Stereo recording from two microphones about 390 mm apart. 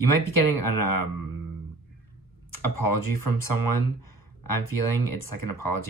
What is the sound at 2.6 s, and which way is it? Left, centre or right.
Speech, right.